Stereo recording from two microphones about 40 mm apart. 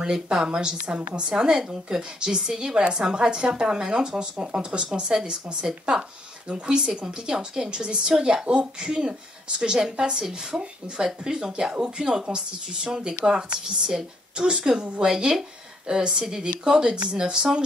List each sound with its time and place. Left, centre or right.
0.0 s a woman's voice: centre
7.0 s a woman's voice: right